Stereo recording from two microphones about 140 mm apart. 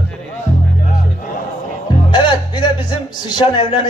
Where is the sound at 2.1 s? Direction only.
35° left (ahead or behind).